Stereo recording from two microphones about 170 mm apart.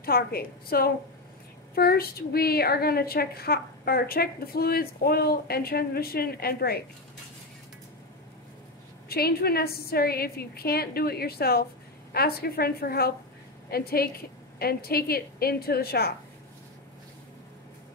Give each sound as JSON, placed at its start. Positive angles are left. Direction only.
{"t": 0.0, "sound": "a woman's voice", "side_deg": 65}
{"t": 9.1, "sound": "a woman's voice", "side_deg": 65}